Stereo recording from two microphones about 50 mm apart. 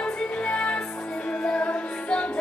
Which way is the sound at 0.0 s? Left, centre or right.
Left.